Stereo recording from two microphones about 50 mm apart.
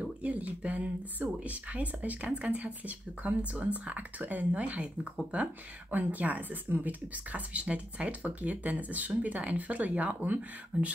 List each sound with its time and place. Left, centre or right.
0.2 s speech: right